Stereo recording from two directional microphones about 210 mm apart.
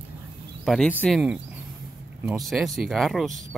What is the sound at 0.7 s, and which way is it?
Speech, 5° left (ahead or behind).